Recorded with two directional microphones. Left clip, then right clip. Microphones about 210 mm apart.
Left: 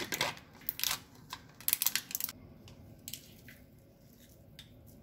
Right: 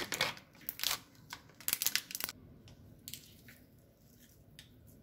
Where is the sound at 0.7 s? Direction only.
5° right (ahead or behind).